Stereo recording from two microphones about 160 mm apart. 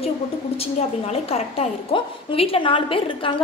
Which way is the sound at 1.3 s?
40° left (ahead or behind).